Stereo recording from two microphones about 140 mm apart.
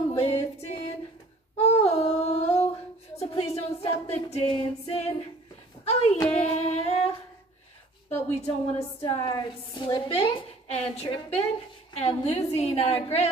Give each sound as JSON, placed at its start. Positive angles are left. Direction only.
{"t": 0.1, "sound": "music", "side_deg": 45}
{"t": 1.6, "sound": "a sound", "side_deg": 45}
{"t": 3.2, "sound": "music", "side_deg": 45}
{"t": 5.9, "sound": "child singing", "side_deg": 50}
{"t": 6.2, "sound": "female singing", "side_deg": 50}
{"t": 8.1, "sound": "a woman's voice", "side_deg": 45}
{"t": 9.0, "sound": "a woman's voice", "side_deg": 35}